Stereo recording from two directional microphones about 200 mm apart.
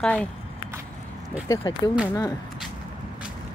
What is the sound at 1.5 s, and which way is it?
Speech, 20° left (ahead or behind).